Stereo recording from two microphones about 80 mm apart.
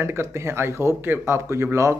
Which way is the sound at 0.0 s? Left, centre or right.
Right.